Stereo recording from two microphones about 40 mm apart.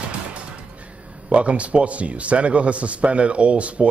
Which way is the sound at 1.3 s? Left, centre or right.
Right.